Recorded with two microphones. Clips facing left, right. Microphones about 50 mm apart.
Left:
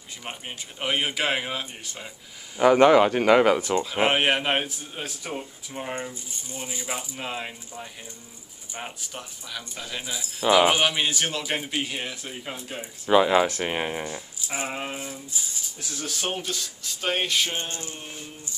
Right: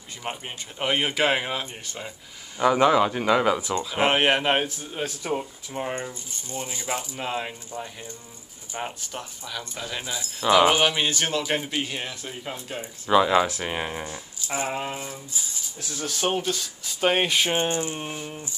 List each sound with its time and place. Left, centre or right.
0.2 s speech: centre
0.8 s a man's voice: centre
2.6 s speech: left
3.9 s a man's voice: centre
9.0 s a man's voice: centre
13.1 s a man's voice: centre
17.0 s speech: right
18.0 s speech: right